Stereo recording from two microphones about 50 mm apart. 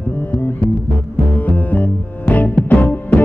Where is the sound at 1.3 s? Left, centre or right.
Left.